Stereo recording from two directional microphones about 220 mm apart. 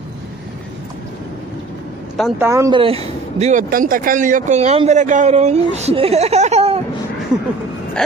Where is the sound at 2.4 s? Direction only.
15° right (ahead or behind).